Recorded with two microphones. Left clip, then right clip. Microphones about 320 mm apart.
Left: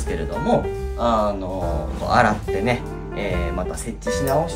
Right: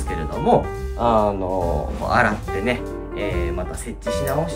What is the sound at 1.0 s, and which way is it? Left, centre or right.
Speech, centre.